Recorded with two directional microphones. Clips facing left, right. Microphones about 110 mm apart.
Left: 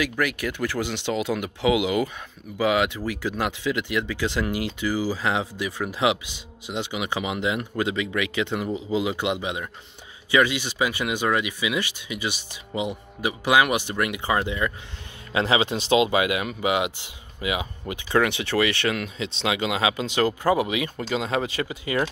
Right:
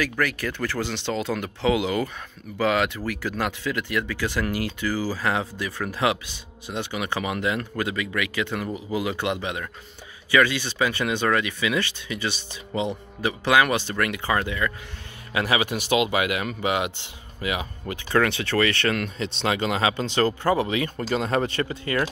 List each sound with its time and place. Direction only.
0.0 s speech: 15° left (ahead or behind)
21.0 s speech: centre (ahead or behind)